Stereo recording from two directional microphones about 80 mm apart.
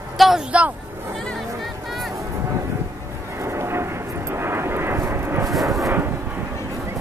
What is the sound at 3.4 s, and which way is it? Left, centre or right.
Vehicle, right.